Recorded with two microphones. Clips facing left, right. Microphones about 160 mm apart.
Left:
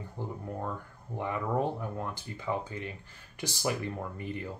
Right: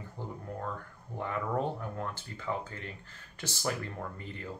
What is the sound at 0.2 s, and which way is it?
Speech, 15° left (ahead or behind).